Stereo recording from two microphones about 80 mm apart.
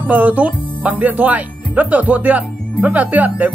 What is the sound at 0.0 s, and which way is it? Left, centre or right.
Speech, right.